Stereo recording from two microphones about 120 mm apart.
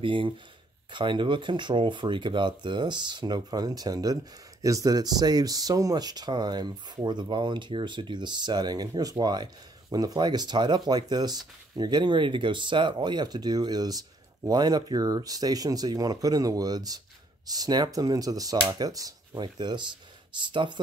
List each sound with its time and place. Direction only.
0.0 s speech: 45° right (ahead or behind)